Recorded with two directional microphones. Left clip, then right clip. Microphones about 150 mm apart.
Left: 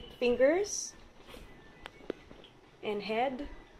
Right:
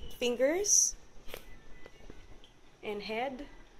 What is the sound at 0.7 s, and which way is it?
Speech, 20° left (ahead or behind).